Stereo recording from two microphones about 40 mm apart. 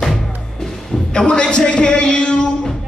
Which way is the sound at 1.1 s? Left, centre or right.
Centre.